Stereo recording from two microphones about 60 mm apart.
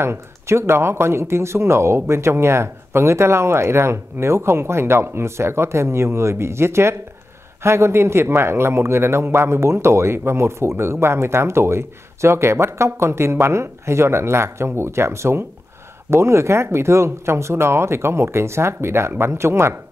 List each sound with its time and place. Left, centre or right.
0.0 s a man's voice: right